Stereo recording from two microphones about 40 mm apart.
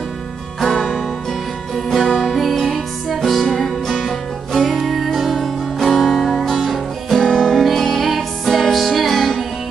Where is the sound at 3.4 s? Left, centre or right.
Centre.